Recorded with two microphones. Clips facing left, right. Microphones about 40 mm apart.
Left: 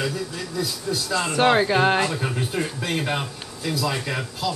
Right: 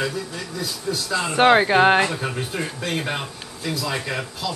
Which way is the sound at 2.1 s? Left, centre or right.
Centre.